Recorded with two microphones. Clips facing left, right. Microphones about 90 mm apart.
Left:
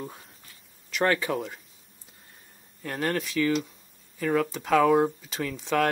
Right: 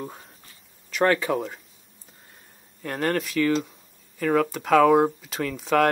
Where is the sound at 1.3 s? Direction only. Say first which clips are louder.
Right 4 dB; 20° right (ahead or behind).